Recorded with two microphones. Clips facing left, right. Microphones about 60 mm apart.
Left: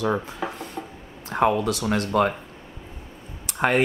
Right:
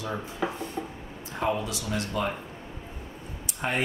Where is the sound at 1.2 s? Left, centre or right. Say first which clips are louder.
Left 8 dB; left.